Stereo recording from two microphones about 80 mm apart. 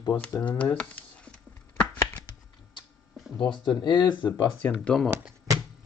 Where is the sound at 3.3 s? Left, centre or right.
Left.